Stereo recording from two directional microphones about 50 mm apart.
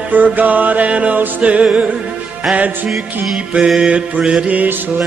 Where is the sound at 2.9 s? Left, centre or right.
Centre.